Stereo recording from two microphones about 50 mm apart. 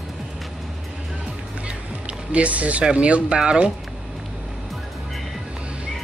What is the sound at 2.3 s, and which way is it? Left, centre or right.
Speech, right.